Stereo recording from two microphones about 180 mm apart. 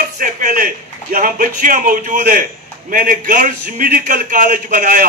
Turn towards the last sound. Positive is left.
turn(degrees=-50)  # may be behind; listen again after turning